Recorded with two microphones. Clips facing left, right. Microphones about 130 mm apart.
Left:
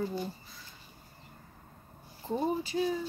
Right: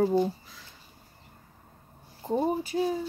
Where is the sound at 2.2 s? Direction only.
50° right (ahead or behind).